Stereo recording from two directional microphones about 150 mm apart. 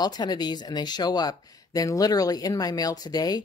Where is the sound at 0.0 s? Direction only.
25° left (ahead or behind).